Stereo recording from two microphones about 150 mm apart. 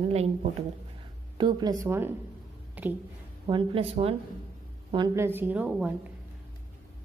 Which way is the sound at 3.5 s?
35° right (ahead or behind).